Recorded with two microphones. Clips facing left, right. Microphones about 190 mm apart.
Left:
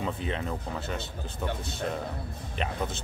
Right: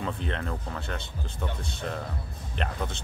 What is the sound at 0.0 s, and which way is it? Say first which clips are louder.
Speech: left 1 dB; 5° left (ahead or behind).